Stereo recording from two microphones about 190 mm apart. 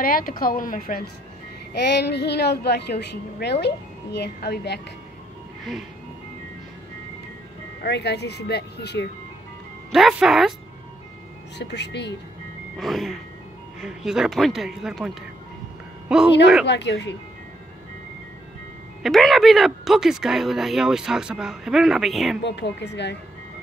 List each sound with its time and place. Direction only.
0.0 s a woman's voice: 50° left (ahead or behind)
1.7 s a woman's voice: 60° left (ahead or behind)
5.6 s speech: centre (ahead or behind)
7.8 s a woman's voice: 60° left (ahead or behind)
9.9 s speech: centre (ahead or behind)
11.5 s a woman's voice: 65° left (ahead or behind)
12.7 s speech: centre (ahead or behind)
16.6 s a woman's voice: 65° left (ahead or behind)
19.0 s speech: centre (ahead or behind)
22.4 s a woman's voice: 65° left (ahead or behind)